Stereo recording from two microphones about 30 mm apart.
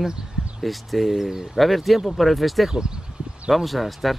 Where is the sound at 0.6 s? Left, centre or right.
Centre.